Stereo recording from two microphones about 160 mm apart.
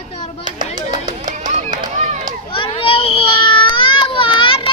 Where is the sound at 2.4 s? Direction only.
35° left (ahead or behind).